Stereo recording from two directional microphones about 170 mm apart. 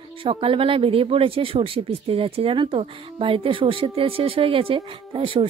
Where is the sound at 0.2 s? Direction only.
30° right (ahead or behind).